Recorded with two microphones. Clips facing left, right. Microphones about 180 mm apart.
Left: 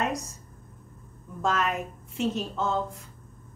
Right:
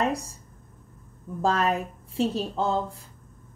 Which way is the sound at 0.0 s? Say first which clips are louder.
Right 3 dB; 30° right (ahead or behind).